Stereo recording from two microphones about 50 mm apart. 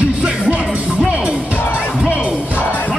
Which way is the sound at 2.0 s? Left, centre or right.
Right.